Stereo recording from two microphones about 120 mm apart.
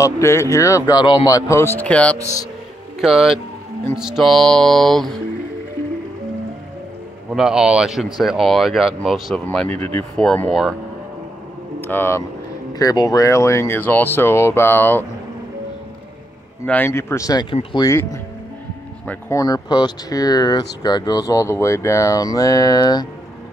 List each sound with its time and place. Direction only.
0.0 s speech: 25° left (ahead or behind); by 2.1 s 10° left (ahead or behind)
3.0 s speech: 5° right (ahead or behind)
7.3 s speech: 5° right (ahead or behind)
11.8 s speech: 15° left (ahead or behind)
12.7 s speech: 30° left (ahead or behind)
16.6 s speech: 15° left (ahead or behind); by 17.5 s 30° left (ahead or behind)
19.0 s speech: 20° left (ahead or behind)
19.4 s speech: 35° left (ahead or behind)